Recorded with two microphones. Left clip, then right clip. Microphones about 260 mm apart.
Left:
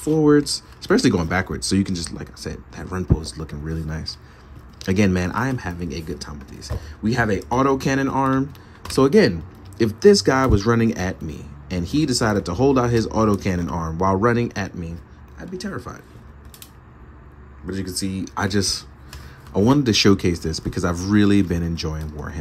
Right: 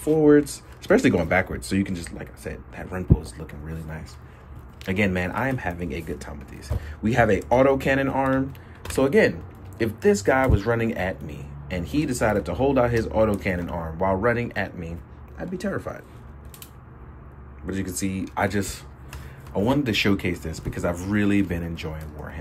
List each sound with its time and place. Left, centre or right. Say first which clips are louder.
0.0 s speech: left 1 dB; centre
15.3 s speech: right 2 dB; centre
17.6 s speech: left 2 dB; centre